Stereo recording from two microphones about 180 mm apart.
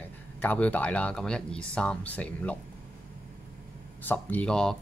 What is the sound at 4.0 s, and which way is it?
Speech, 10° left (ahead or behind).